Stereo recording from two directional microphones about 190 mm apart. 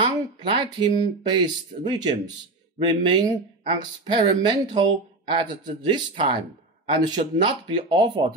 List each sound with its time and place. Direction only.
0.0 s speech: 25° right (ahead or behind)